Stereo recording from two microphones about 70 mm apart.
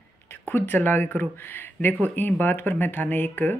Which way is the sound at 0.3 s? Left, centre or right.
Left.